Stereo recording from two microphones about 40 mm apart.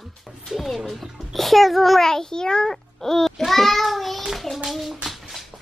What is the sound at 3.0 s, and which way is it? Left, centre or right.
Child singing, centre.